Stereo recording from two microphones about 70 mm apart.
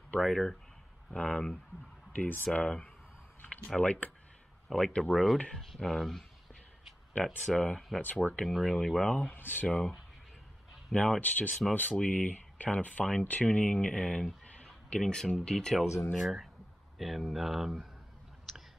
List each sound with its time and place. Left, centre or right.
0.2 s speech: centre
2.1 s speech: left
2.6 s speech: centre
4.6 s speech: centre
5.1 s speech: centre
7.2 s speech: centre
9.3 s speech: left
9.7 s speech: centre
14.4 s a sound: centre
15.0 s speech: centre